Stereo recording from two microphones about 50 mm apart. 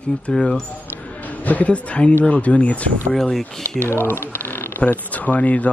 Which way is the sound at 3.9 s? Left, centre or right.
Left.